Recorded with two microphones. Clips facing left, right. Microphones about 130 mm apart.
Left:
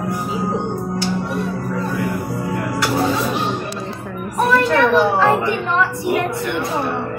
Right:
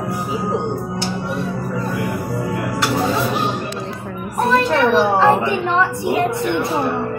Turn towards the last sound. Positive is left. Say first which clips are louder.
# right 1 dB
turn(degrees=-20)  # may be behind; listen again after turning